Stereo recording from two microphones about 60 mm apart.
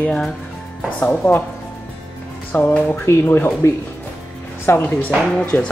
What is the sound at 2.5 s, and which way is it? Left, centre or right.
Speech, left.